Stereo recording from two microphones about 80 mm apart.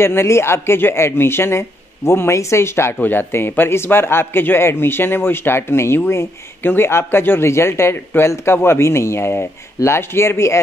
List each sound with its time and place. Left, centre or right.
0.0 s speech: left